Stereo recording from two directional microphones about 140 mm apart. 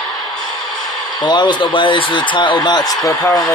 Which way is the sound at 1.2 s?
35° left (ahead or behind).